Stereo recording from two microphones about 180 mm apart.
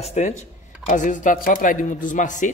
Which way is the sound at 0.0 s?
40° left (ahead or behind).